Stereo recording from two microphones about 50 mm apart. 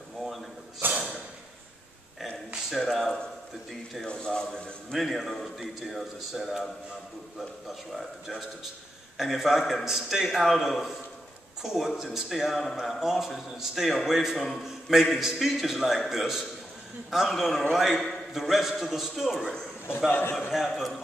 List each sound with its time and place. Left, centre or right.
2.8 s a man's voice: centre
4.1 s a man's voice: centre
4.9 s a man's voice: centre
7.9 s a man's voice: centre
20.1 s a man's voice: left
20.5 s a man's voice: centre